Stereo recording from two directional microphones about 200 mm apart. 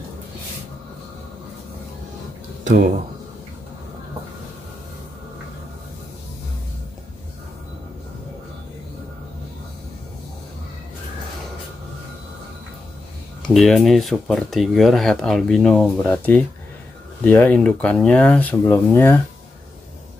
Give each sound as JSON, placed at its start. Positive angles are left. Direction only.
{"t": 2.6, "sound": "speech", "side_deg": -40}
{"t": 13.5, "sound": "speech", "side_deg": 0}